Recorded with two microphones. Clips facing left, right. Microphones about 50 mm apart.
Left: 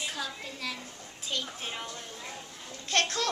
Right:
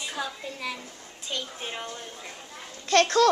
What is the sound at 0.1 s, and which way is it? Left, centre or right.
A woman's voice, centre.